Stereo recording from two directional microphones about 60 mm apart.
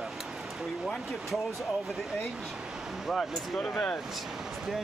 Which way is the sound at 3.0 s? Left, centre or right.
Centre.